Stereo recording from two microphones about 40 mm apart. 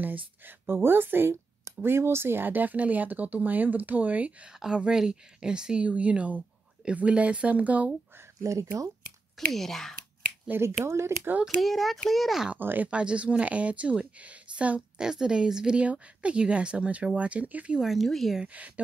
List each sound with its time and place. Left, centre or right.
0.0 s speech: right
0.7 s speech: right
4.5 s a woman's voice: centre
5.8 s speech: right
9.5 s speech: centre
10.6 s speech: right
11.4 s speech: centre
12.5 s speech: right
12.8 s speech: right
15.0 s a woman's voice: centre; by 17.7 s right
17.7 s speech: centre
18.0 s speech: centre
18.6 s speech: right